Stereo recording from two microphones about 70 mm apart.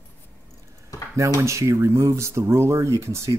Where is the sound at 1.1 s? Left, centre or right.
Right.